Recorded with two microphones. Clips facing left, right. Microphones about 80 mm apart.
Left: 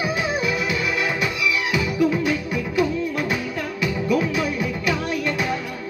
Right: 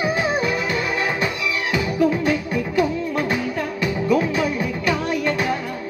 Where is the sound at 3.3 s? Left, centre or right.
Right.